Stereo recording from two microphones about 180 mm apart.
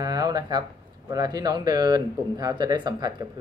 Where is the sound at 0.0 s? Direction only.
20° right (ahead or behind).